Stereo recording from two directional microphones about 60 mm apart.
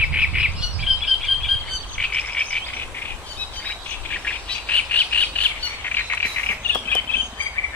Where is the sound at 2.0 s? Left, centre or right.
Left.